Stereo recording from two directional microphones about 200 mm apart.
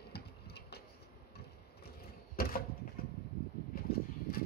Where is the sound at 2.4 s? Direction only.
50° left (ahead or behind).